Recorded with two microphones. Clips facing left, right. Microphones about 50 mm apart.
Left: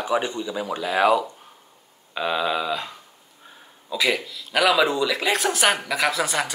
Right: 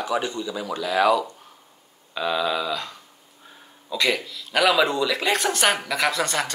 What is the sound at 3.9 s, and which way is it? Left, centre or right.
Speech, centre.